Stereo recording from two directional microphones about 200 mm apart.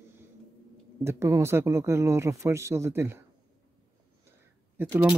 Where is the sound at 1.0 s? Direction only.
15° right (ahead or behind).